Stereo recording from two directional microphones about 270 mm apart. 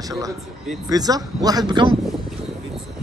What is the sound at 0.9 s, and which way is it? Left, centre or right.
Speech, centre.